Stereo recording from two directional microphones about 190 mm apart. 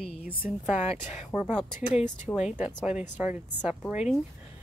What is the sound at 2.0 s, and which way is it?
A woman's voice, 5° right (ahead or behind).